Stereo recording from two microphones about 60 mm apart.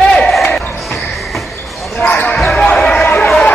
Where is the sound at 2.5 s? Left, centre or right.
Centre.